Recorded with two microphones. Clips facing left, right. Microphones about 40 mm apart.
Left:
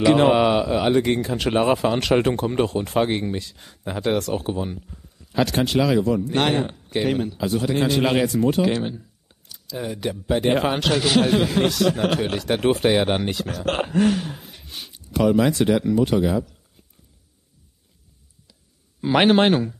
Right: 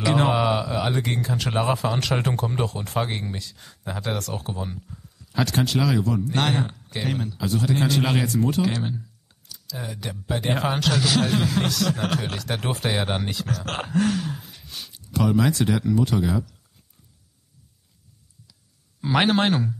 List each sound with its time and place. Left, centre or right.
0.0 s a man's voice: centre
18.9 s a man's voice: centre